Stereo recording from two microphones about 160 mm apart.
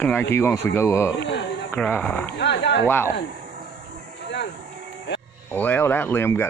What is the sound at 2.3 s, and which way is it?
Speech, 90° left.